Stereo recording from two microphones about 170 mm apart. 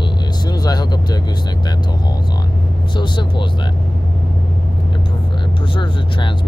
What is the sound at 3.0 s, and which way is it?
Speech, 25° left (ahead or behind).